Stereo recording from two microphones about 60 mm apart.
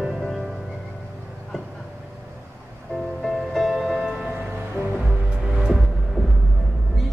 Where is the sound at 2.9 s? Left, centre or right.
Centre.